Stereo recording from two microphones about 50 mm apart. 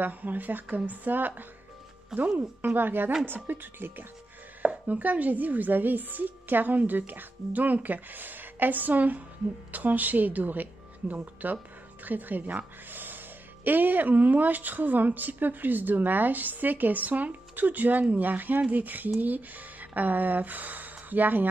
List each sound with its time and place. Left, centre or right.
0.0 s speech: right
4.6 s speech: right